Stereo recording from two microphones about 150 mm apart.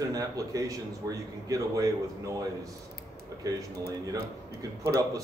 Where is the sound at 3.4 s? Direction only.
20° right (ahead or behind).